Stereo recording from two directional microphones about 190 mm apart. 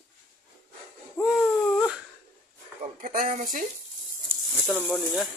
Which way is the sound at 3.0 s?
50° right (ahead or behind).